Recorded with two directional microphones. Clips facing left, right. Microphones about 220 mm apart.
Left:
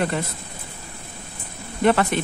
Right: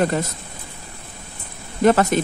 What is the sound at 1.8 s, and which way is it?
Speech, 40° right (ahead or behind).